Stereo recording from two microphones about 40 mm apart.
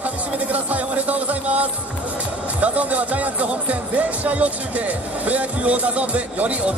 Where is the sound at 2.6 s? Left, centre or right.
Right.